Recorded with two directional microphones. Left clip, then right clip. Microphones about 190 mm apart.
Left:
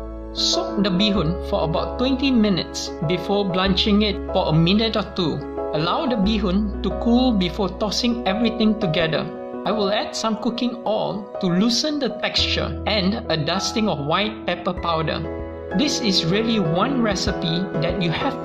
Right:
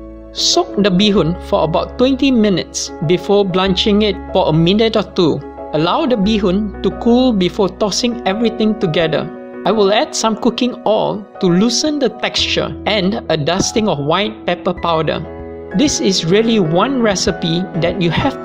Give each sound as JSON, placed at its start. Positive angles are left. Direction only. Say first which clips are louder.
{"t": 0.4, "sound": "speech", "louder": "right 7 dB", "side_deg": -35}